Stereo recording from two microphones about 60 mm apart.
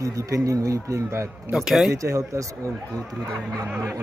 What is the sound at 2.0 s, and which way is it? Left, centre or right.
Speech, right.